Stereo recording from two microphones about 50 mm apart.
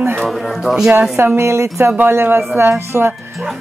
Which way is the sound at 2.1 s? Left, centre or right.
Right.